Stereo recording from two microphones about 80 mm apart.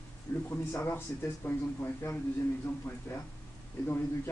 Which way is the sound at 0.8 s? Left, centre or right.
Left.